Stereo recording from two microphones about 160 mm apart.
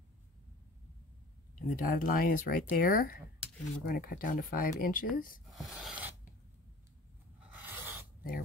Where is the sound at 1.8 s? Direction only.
65° left (ahead or behind).